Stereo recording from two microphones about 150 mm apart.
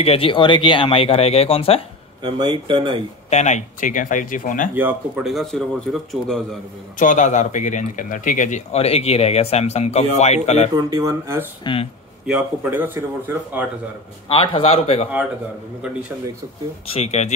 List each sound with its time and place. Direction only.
0.0 s speech: 40° left (ahead or behind)
2.2 s speech: 30° right (ahead or behind)
3.3 s speech: 50° left (ahead or behind)
4.7 s speech: 15° right (ahead or behind)
5.2 s speech: centre (ahead or behind)
7.0 s speech: 55° left (ahead or behind)
10.7 s speech: 25° right (ahead or behind)
11.6 s speech: 35° left (ahead or behind)
12.3 s speech: 15° right (ahead or behind)
14.3 s speech: 40° left (ahead or behind)
16.9 s speech: 45° left (ahead or behind)